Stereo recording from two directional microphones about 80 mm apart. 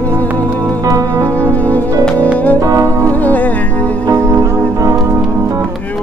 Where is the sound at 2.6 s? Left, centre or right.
Right.